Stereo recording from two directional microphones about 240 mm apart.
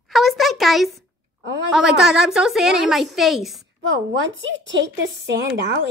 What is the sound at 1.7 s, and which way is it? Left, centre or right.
A woman's voice, centre.